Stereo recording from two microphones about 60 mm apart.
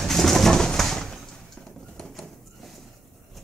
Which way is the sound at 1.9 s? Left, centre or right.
Centre.